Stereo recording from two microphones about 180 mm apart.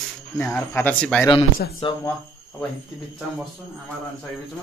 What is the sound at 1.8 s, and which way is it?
Speech, 30° left (ahead or behind).